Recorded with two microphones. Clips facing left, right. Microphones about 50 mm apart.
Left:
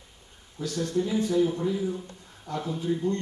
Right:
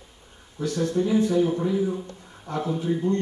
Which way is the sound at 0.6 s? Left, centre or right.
Right.